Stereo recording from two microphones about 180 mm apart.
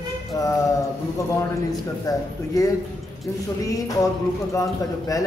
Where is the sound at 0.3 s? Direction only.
15° left (ahead or behind).